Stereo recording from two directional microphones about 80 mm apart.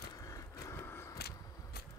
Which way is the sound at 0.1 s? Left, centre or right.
Left.